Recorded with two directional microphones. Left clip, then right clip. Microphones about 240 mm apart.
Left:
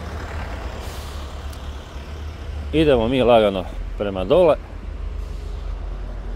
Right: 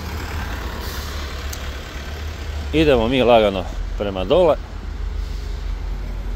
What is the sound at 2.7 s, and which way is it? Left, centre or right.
Speech, centre.